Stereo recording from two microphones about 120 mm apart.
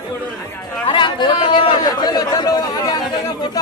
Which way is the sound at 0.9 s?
40° left (ahead or behind).